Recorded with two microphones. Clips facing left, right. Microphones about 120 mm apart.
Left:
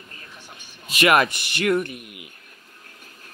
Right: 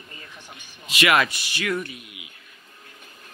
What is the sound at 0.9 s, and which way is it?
Speech, 45° left (ahead or behind).